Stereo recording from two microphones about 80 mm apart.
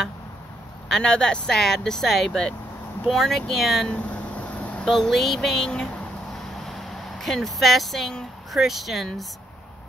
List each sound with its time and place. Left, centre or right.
0.8 s speech: centre
3.9 s vehicle: centre
4.8 s speech: centre